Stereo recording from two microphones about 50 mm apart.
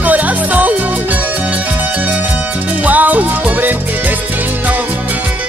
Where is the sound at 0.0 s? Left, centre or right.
Right.